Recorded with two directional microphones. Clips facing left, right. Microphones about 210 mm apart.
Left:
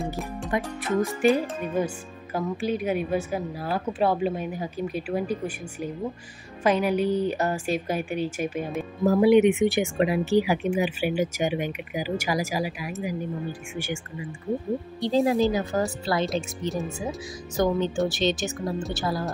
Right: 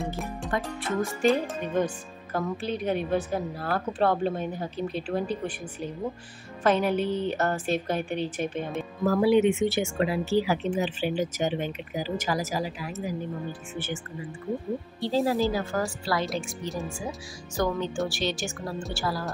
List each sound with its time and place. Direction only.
0.0 s music: centre (ahead or behind)
1.2 s speech: 10° left (ahead or behind)
6.6 s speech: 10° left (ahead or behind)